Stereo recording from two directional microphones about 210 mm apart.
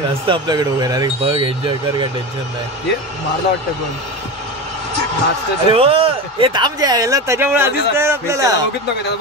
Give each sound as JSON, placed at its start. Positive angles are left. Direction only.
{"t": 0.3, "sound": "speech", "side_deg": -20}
{"t": 5.7, "sound": "speech", "side_deg": -25}